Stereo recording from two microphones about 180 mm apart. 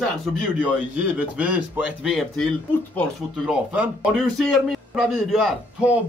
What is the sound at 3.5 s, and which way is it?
Speech, 5° right (ahead or behind).